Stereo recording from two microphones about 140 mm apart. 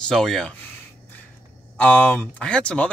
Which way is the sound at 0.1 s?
5° left (ahead or behind).